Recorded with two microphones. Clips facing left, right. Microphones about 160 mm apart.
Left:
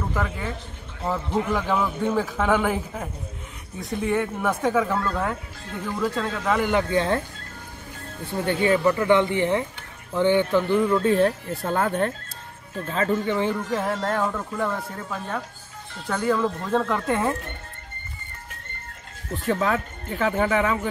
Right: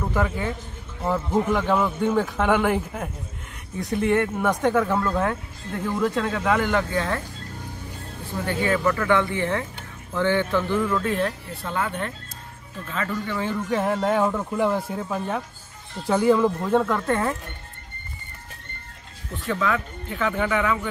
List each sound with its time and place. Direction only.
0.1 s a man's voice: centre (ahead or behind)
1.5 s a man's voice: centre (ahead or behind)
4.9 s a man's voice: 5° right (ahead or behind)
6.7 s speech: 20° left (ahead or behind)
8.5 s speech: 20° left (ahead or behind)
13.3 s speech: 20° left (ahead or behind)
13.7 s speech: 5° right (ahead or behind)
16.7 s a man's voice: centre (ahead or behind)
19.4 s speech: 40° left (ahead or behind)